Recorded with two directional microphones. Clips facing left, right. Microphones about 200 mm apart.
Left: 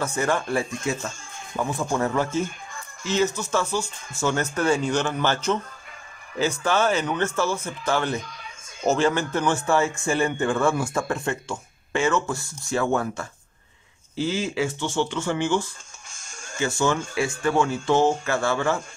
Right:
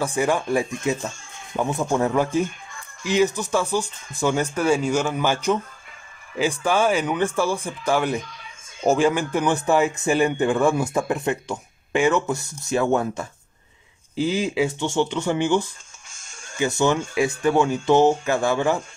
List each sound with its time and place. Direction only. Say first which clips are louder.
0.0 s a man's voice: right 3 dB; 15° right (ahead or behind)
6.6 s a man's voice: right 2 dB; 10° right (ahead or behind)